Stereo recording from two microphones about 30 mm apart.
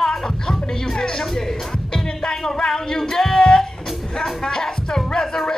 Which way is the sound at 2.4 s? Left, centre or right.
Centre.